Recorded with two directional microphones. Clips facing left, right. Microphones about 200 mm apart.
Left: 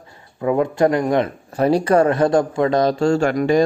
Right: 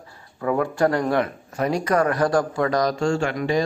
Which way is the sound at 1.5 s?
30° left (ahead or behind).